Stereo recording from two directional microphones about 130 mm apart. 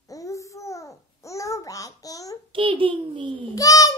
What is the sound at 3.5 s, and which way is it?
Speech, 25° left (ahead or behind).